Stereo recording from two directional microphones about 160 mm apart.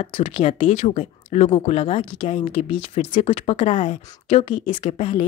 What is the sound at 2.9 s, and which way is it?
Speech, 45° left (ahead or behind).